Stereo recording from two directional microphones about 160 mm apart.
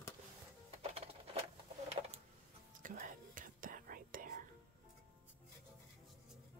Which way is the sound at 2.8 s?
55° right (ahead or behind).